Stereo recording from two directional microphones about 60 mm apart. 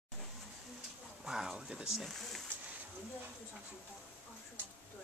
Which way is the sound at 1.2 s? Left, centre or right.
Centre.